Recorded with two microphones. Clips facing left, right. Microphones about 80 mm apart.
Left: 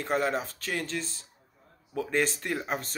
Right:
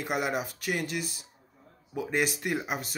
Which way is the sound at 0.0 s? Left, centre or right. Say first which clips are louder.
Left 2 dB; centre.